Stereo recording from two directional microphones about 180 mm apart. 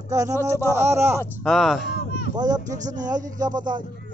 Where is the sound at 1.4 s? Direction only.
Centre (ahead or behind).